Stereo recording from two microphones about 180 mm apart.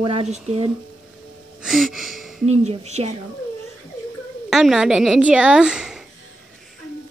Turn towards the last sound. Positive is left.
turn(degrees=-5)  # may be behind; listen again after turning